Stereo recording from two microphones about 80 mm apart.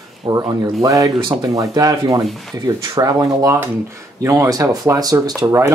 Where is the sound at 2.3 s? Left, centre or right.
Centre.